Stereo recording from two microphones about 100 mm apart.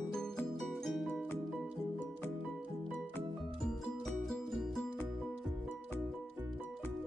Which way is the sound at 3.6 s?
5° left (ahead or behind).